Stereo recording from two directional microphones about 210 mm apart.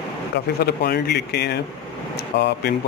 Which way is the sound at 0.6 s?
50° left (ahead or behind).